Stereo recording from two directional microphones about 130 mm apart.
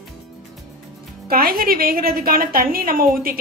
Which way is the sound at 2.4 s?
90° right.